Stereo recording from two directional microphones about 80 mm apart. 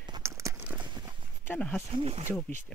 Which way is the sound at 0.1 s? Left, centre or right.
Right.